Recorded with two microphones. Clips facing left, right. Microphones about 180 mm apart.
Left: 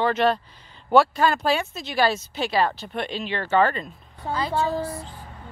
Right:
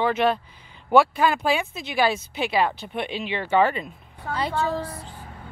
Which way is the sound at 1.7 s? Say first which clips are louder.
Even; 55° right (ahead or behind).